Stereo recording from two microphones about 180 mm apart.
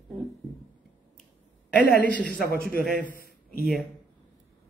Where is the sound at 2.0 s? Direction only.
10° left (ahead or behind).